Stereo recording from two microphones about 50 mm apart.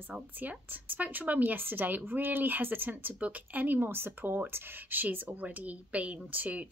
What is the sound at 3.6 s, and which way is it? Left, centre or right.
A woman's voice, right.